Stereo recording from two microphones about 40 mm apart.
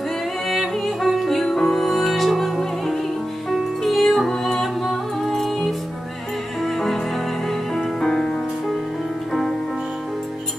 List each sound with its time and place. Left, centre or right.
0.5 s yodeling: centre
1.4 s music: centre
6.6 s music: centre
8.1 s music: centre